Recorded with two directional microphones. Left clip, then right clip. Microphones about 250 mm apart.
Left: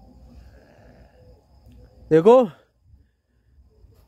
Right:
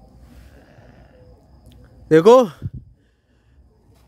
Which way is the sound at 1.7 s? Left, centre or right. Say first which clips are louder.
Right 3 dB; centre.